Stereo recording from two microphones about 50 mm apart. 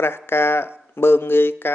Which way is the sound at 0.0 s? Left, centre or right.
Left.